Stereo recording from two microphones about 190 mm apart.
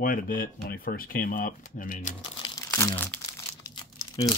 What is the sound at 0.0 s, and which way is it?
Speech, 45° left (ahead or behind).